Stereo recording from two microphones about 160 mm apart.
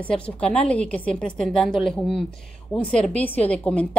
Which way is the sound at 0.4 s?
10° left (ahead or behind).